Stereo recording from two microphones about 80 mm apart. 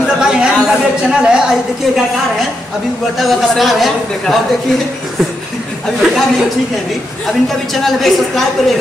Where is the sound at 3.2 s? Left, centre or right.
Centre.